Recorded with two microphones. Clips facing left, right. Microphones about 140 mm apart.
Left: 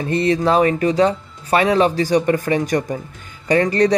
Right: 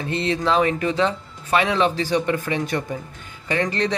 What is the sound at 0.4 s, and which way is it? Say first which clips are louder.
Speech: left 4 dB; 45° left (ahead or behind).